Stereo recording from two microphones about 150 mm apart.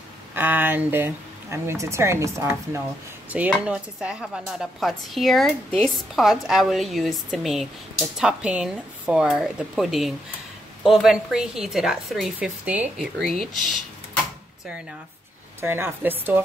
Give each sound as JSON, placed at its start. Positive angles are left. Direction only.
{"t": 0.3, "sound": "a woman's voice", "side_deg": -15}
{"t": 15.6, "sound": "speech", "side_deg": -15}